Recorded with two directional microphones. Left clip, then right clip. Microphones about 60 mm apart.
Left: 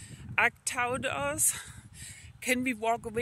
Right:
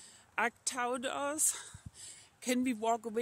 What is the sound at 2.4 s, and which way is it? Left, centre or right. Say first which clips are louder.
Speech: left 4 dB; right.